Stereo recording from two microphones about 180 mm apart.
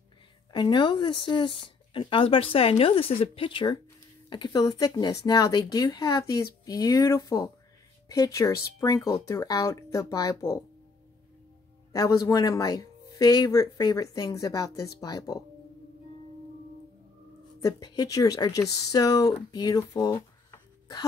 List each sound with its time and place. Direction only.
0.5 s speech: 25° left (ahead or behind)
11.9 s speech: 15° left (ahead or behind)
17.6 s speech: 20° left (ahead or behind)